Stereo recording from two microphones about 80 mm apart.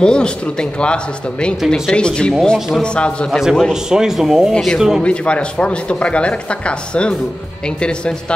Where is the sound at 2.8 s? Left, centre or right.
Centre.